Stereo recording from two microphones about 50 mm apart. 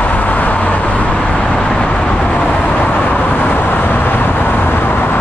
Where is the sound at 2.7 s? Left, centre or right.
Left.